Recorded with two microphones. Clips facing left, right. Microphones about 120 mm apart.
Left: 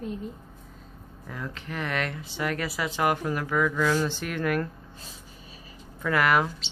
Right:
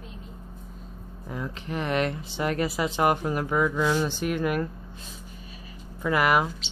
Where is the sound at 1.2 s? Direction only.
20° right (ahead or behind).